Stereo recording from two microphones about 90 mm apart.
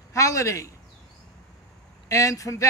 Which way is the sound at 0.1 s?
35° left (ahead or behind).